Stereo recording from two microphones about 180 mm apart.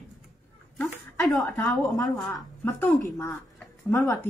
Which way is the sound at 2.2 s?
10° left (ahead or behind).